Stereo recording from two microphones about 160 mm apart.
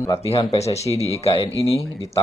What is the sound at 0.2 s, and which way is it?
Speech, 35° left (ahead or behind).